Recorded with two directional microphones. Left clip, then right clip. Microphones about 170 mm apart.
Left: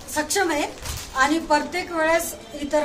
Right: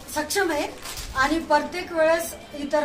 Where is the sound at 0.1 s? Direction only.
10° left (ahead or behind).